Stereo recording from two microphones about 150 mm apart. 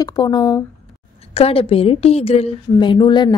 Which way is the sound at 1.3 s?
40° left (ahead or behind).